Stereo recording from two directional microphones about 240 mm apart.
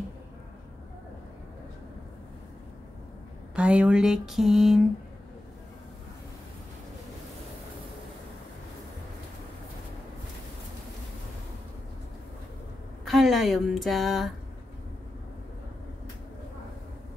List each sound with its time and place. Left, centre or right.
3.5 s speech: centre
13.0 s speech: centre